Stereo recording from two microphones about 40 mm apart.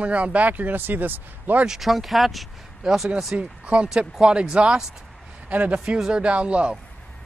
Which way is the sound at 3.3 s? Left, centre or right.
Right.